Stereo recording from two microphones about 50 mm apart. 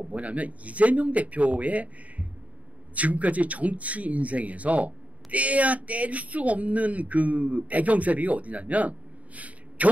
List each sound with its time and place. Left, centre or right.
0.0 s speech: right